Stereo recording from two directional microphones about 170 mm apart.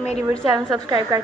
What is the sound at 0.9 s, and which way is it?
Speech, 20° right (ahead or behind).